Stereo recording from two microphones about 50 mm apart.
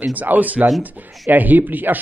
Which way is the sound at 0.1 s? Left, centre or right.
Right.